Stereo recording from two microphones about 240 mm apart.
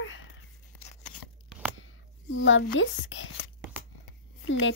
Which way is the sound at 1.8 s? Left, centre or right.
Left.